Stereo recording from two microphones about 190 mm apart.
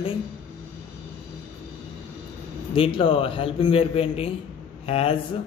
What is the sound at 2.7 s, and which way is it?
A man's voice, 30° left (ahead or behind).